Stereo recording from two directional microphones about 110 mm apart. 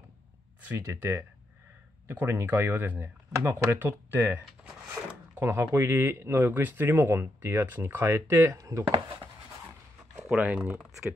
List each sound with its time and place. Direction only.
0.7 s a man's voice: 20° right (ahead or behind)
5.4 s a man's voice: 25° right (ahead or behind)
10.3 s speech: 10° right (ahead or behind)